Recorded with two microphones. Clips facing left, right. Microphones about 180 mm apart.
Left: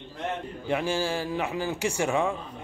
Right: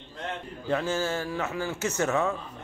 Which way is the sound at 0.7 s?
10° left (ahead or behind).